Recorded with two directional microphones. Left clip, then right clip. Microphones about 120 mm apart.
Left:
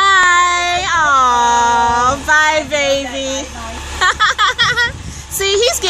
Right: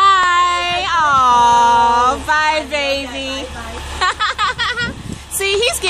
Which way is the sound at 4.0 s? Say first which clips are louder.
Left 4 dB; 25° left (ahead or behind).